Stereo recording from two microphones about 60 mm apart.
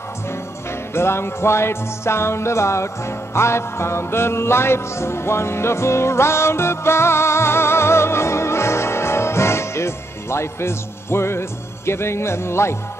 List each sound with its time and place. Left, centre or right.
0.9 s music: left